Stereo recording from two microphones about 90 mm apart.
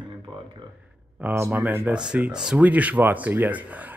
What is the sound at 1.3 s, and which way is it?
Speech, 30° right (ahead or behind).